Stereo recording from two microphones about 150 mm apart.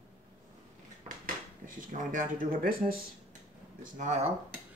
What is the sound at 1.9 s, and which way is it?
Speech, 65° right (ahead or behind).